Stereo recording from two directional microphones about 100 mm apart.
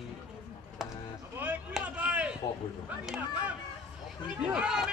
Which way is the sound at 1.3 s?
15° right (ahead or behind).